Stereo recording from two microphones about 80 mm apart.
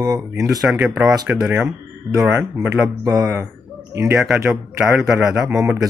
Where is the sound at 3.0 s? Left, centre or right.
Right.